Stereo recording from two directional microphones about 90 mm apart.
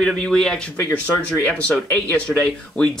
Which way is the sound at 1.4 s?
15° left (ahead or behind).